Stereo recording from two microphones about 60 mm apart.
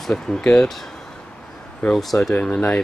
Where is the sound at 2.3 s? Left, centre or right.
Left.